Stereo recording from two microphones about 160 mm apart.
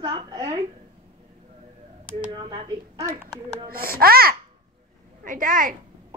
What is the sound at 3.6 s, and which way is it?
Speech, 65° right (ahead or behind).